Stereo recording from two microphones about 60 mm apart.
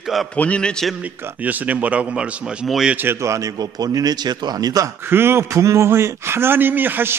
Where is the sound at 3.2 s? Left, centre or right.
Right.